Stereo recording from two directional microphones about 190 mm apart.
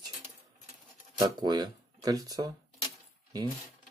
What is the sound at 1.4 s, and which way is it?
Speech, 20° right (ahead or behind).